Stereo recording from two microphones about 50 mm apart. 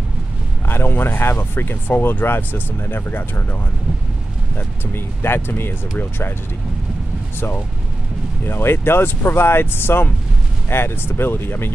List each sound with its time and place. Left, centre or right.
0.7 s speech: left
4.6 s speech: left
7.3 s speech: left